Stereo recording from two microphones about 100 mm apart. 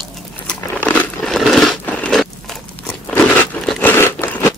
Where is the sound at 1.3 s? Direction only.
Centre (ahead or behind).